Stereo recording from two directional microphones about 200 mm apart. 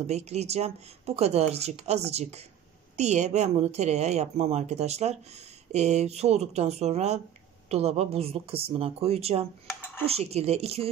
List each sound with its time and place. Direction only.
0.0 s a woman's voice: 35° right (ahead or behind)